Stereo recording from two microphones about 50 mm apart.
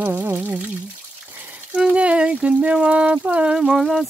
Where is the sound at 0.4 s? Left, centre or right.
Right.